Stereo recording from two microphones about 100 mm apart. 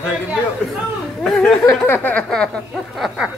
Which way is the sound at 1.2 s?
5° left (ahead or behind).